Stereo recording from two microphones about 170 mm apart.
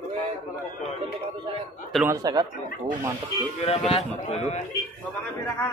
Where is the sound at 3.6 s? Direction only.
35° left (ahead or behind).